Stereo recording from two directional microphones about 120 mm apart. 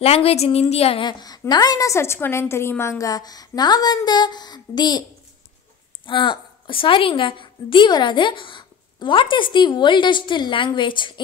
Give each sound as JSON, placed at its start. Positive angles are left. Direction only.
{"t": 0.0, "sound": "a woman's voice", "side_deg": 55}
{"t": 1.0, "sound": "a woman's voice", "side_deg": 30}
{"t": 6.0, "sound": "a woman's voice", "side_deg": 45}